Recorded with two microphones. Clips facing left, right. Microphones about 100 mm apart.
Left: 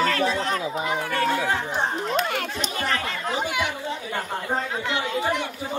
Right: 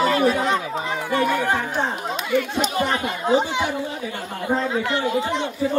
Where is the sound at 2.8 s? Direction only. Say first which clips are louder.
Right 4 dB; 25° right (ahead or behind).